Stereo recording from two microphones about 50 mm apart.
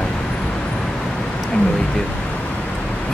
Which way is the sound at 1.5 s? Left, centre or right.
Centre.